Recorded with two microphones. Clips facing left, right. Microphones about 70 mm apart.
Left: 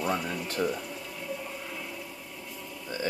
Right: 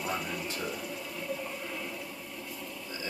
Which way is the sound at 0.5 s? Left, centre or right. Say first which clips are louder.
Left 6 dB; centre.